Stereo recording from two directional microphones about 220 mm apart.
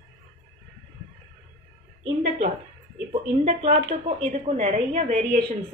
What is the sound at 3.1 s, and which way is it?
A woman's voice, 30° right (ahead or behind).